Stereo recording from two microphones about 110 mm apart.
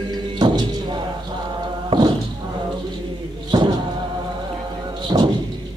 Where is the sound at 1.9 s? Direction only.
45° right (ahead or behind).